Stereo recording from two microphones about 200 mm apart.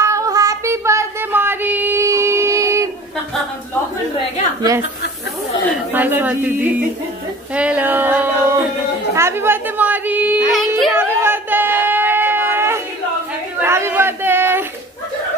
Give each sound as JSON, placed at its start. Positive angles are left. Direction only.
{"t": 0.0, "sound": "child singing", "side_deg": -15}
{"t": 4.6, "sound": "a man's voice", "side_deg": -15}
{"t": 5.9, "sound": "a man's voice", "side_deg": -10}
{"t": 7.5, "sound": "a sound", "side_deg": -5}
{"t": 9.1, "sound": "a woman's voice", "side_deg": -10}
{"t": 10.9, "sound": "a sound", "side_deg": -10}
{"t": 13.6, "sound": "chatter", "side_deg": -15}